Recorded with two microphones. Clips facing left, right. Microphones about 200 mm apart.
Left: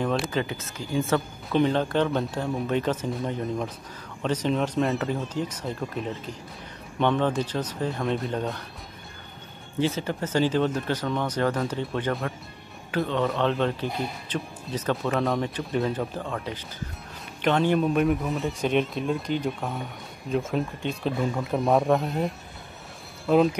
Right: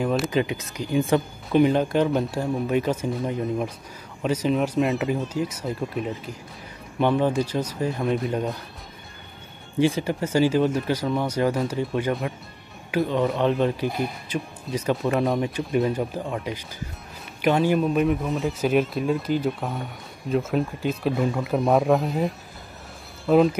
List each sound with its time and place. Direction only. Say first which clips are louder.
0.0 s a sound: right 2 dB; 5° right (ahead or behind)
0.3 s a man's voice: right 4 dB; 15° right (ahead or behind)
9.8 s a man's voice: right 4 dB; 15° right (ahead or behind)